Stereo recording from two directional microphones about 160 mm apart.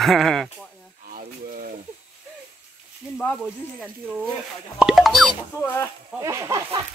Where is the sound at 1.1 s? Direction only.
60° right (ahead or behind).